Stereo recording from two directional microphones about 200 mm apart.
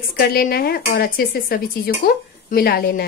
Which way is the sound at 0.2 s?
50° left (ahead or behind).